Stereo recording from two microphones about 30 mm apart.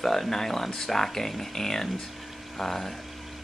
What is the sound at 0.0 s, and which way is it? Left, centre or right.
Speech, centre.